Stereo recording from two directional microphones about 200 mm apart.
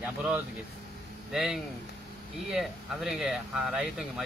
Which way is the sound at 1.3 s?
Centre (ahead or behind).